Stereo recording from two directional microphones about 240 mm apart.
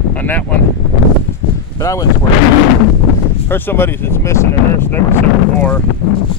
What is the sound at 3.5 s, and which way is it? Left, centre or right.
Speech, centre.